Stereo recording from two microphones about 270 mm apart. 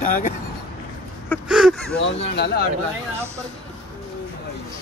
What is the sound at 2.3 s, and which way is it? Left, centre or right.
Speech, left.